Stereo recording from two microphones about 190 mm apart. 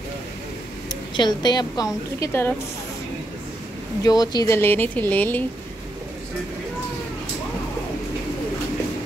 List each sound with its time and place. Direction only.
1.1 s a woman's voice: 25° left (ahead or behind)
4.0 s speech: 20° left (ahead or behind)